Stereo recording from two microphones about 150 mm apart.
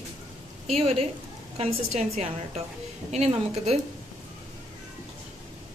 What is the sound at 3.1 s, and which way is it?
Speech, 45° right (ahead or behind).